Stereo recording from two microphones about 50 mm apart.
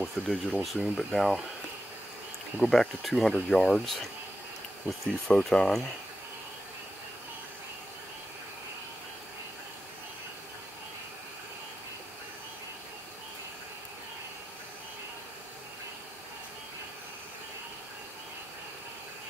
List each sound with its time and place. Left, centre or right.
0.0 s speech: centre
2.6 s speech: centre
4.9 s speech: right
5.3 s speech: centre